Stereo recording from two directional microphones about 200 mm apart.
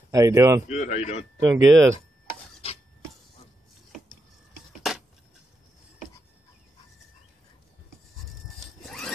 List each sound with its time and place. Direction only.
0.1 s speech: 15° right (ahead or behind)
0.7 s speech: 35° left (ahead or behind)
1.4 s speech: 20° right (ahead or behind)
8.8 s a sound: 5° left (ahead or behind)